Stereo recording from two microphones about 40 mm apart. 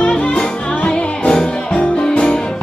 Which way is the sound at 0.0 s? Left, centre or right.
Left.